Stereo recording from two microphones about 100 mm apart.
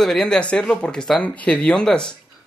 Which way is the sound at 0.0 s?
5° left (ahead or behind).